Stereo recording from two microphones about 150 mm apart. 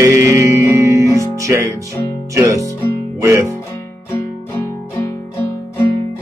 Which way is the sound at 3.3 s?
20° right (ahead or behind).